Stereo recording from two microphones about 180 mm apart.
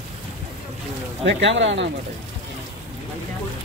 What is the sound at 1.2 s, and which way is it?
Speech, 90° right.